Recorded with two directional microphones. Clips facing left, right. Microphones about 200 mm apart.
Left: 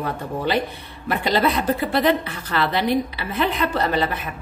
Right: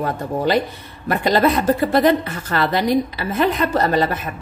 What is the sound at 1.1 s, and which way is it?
A woman's voice, 45° right (ahead or behind).